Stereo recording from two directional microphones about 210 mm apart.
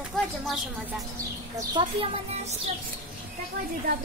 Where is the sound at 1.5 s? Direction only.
25° right (ahead or behind).